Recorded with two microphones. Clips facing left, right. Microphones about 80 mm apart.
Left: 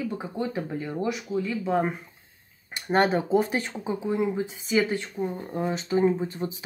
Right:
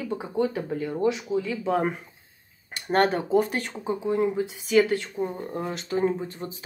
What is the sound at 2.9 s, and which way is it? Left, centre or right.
Speech, centre.